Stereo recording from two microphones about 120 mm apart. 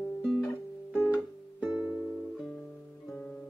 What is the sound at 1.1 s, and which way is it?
Music, 10° right (ahead or behind).